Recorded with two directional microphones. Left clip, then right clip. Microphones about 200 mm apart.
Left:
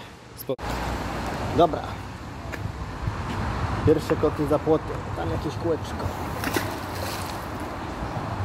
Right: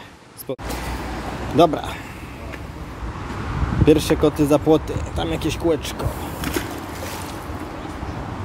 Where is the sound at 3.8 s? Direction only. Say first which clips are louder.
Right 6 dB; 55° right (ahead or behind).